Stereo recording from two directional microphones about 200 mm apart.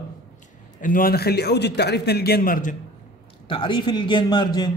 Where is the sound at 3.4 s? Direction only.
25° left (ahead or behind).